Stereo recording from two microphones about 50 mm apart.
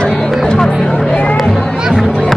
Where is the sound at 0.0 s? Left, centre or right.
Centre.